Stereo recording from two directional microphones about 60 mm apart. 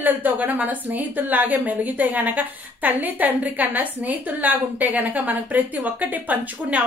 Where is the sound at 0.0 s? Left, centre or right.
Right.